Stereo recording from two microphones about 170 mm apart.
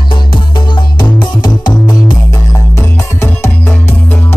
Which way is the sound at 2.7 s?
15° left (ahead or behind).